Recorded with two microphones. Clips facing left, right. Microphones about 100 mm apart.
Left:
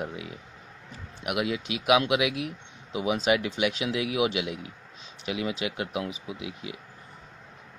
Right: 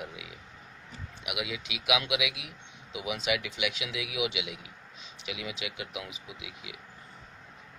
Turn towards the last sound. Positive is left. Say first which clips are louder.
# left 8 dB
turn(degrees=40)  # may be behind; listen again after turning